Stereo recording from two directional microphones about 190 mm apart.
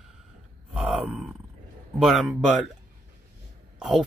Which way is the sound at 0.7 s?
5° right (ahead or behind).